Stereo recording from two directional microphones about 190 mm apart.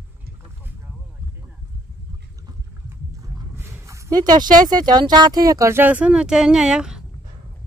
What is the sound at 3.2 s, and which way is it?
Speech, 15° right (ahead or behind).